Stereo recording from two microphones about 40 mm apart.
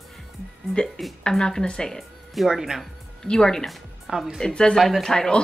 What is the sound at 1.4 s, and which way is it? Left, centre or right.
Speech, centre.